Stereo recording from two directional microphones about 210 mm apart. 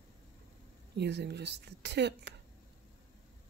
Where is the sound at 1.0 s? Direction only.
50° right (ahead or behind).